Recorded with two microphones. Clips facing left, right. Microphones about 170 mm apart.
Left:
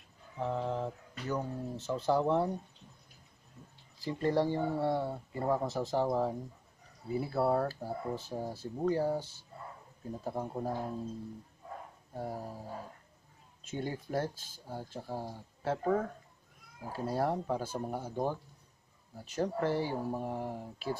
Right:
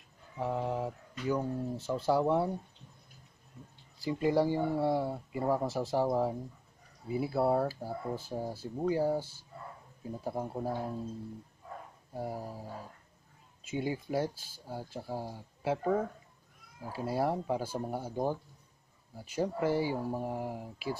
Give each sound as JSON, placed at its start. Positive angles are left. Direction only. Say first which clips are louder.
{"t": 0.4, "sound": "speech", "louder": "right 1 dB", "side_deg": -10}
{"t": 4.0, "sound": "speech", "louder": "right 2 dB", "side_deg": -10}
{"t": 12.1, "sound": "speech", "louder": "right 1 dB", "side_deg": -10}
{"t": 13.7, "sound": "speech", "louder": "right 3 dB", "side_deg": -10}